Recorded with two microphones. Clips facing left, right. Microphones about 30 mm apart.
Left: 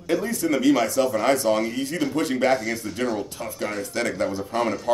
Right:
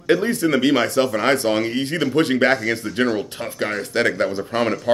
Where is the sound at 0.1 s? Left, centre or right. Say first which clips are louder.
Right 5 dB; right.